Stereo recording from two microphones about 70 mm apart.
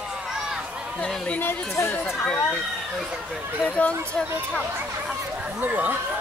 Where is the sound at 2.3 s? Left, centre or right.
Left.